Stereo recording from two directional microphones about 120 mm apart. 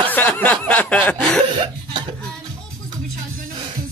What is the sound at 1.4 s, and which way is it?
Laughter, 45° right (ahead or behind).